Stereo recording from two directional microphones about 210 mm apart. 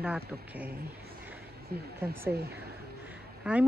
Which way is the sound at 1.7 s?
45° right (ahead or behind).